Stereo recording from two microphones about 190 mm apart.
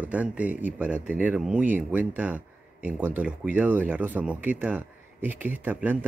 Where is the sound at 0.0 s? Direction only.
10° right (ahead or behind).